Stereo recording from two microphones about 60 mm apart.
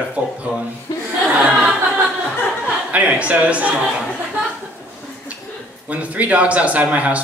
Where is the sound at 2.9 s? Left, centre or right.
Right.